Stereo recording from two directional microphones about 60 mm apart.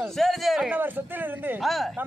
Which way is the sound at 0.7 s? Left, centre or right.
Right.